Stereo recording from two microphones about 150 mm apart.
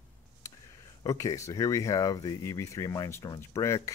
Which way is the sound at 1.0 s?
20° left (ahead or behind).